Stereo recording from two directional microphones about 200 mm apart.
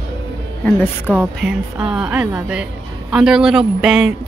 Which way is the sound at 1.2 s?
5° right (ahead or behind).